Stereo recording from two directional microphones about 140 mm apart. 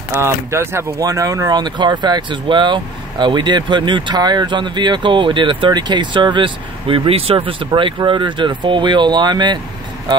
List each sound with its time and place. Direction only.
0.1 s speech: 20° right (ahead or behind)